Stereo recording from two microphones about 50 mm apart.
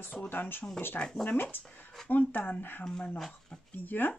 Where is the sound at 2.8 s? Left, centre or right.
Centre.